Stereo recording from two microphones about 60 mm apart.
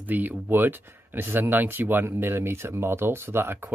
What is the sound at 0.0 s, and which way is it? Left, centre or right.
Speech, right.